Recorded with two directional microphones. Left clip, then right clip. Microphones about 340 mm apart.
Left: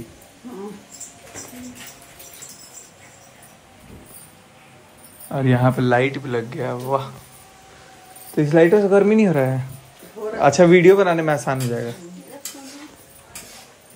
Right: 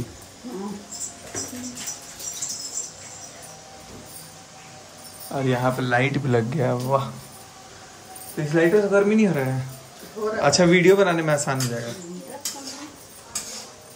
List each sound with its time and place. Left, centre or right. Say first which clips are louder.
5.4 s speech: left 3 dB; left
6.0 s speech: right 1 dB; centre
8.4 s a man's voice: left 5 dB; centre